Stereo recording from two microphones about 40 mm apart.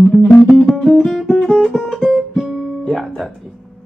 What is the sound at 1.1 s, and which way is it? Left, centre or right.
Guitar, centre.